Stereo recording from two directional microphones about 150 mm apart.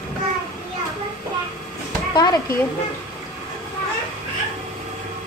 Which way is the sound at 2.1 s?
30° left (ahead or behind).